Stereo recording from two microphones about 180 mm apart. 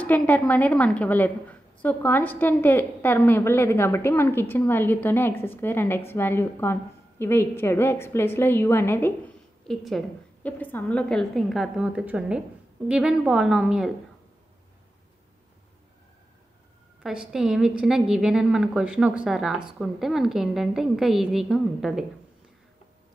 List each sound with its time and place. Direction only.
0.0 s a woman's voice: 10° left (ahead or behind)
9.7 s a woman's voice: centre (ahead or behind)
17.0 s a woman's voice: centre (ahead or behind)